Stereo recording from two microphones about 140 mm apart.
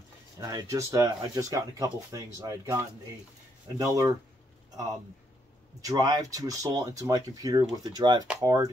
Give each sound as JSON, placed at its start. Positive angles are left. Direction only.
{"t": 0.4, "sound": "speech", "side_deg": -25}
{"t": 5.8, "sound": "speech", "side_deg": -25}